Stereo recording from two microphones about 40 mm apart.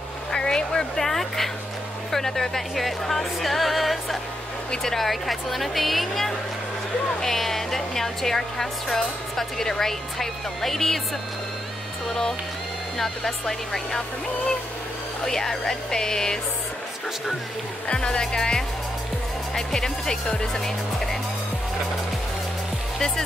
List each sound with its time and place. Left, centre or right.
0.3 s a woman's voice: centre
12.1 s a woman's voice: centre
15.2 s a woman's voice: centre
17.8 s a woman's voice: left
22.9 s speech: centre